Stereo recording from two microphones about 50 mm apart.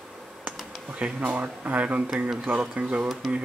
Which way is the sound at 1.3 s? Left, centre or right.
Right.